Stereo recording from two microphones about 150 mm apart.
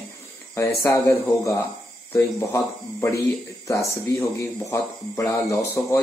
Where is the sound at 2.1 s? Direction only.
15° left (ahead or behind).